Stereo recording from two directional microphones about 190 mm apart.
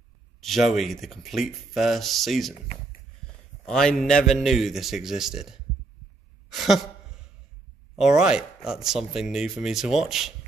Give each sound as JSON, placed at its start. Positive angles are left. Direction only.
{"t": 0.4, "sound": "speech", "side_deg": 0}
{"t": 3.6, "sound": "speech", "side_deg": 5}
{"t": 6.5, "sound": "a sound", "side_deg": 0}
{"t": 8.0, "sound": "speech", "side_deg": -5}